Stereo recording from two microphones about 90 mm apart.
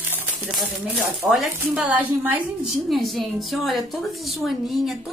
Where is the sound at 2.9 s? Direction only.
Centre (ahead or behind).